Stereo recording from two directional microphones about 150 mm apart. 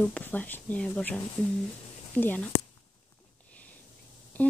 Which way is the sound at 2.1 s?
10° left (ahead or behind).